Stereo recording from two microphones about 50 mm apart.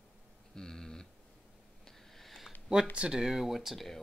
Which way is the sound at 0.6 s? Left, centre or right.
Centre.